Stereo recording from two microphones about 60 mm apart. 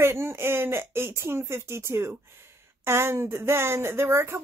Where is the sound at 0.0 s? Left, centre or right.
Right.